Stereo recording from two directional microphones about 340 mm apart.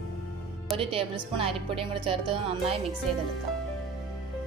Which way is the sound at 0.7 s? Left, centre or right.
Centre.